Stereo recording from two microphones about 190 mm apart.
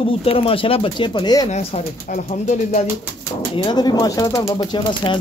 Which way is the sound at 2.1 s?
40° left (ahead or behind).